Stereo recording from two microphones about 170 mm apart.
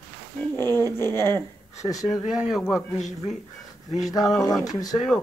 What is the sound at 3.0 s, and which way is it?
Speech, 45° left (ahead or behind).